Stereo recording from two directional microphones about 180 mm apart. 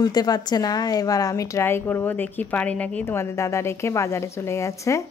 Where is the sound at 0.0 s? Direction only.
20° left (ahead or behind).